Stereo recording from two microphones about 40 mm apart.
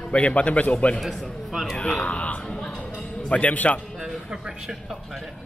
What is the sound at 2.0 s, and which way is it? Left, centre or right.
Speech, left.